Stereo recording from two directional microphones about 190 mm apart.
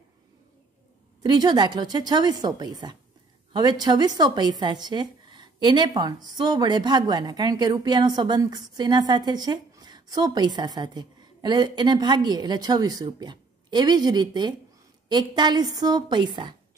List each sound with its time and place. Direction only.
1.2 s a woman's voice: 20° right (ahead or behind)